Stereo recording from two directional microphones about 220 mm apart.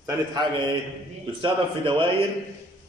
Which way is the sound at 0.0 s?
15° right (ahead or behind).